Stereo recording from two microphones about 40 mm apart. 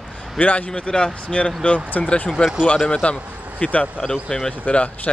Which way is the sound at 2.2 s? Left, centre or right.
Centre.